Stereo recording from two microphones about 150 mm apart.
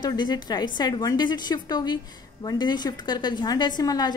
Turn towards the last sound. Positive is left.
turn(degrees=25)  # may be behind; listen again after turning